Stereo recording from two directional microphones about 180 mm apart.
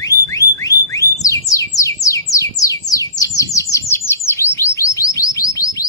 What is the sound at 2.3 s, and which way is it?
Bird, 20° left (ahead or behind).